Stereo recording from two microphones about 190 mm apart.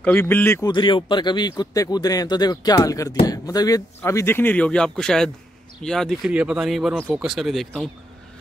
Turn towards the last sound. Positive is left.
turn(degrees=0)  # may be behind; listen again after turning